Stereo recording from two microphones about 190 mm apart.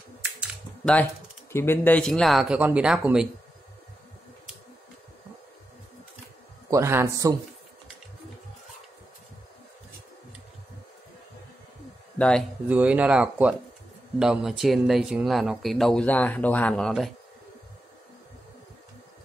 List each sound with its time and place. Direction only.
1.5 s speech: 10° left (ahead or behind); by 3.3 s 5° right (ahead or behind)
6.7 s speech: 15° right (ahead or behind)
12.2 s speech: 5° left (ahead or behind)
12.6 s speech: 10° right (ahead or behind)